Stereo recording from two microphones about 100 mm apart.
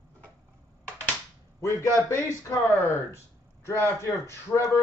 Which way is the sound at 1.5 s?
30° left (ahead or behind).